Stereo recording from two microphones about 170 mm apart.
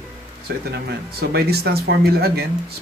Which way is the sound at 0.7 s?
70° right (ahead or behind).